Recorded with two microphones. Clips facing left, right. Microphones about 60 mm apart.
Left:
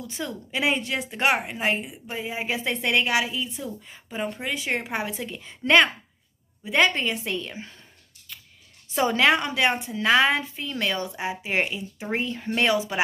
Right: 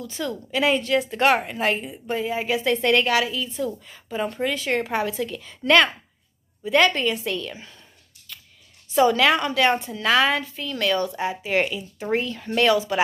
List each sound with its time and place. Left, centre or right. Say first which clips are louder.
0.0 s a woman's voice: right 4 dB; left
2.4 s a woman's voice: right 4 dB; left
8.3 s a sound: right 1 dB; left
8.9 s a woman's voice: right 3 dB; left